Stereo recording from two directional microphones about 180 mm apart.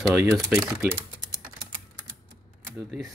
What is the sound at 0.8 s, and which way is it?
Speech, 55° right (ahead or behind).